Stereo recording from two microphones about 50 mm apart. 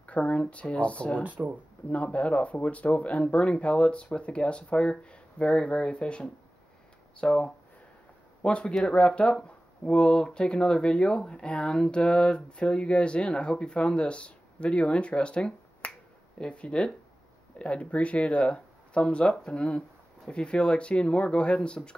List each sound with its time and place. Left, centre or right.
0.0 s speech: left
1.2 s speech: right
1.9 s speech: left